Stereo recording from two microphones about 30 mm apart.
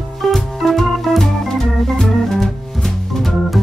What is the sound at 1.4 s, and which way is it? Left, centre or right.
Organ, centre.